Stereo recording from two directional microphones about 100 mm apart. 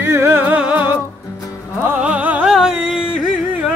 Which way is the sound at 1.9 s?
15° right (ahead or behind).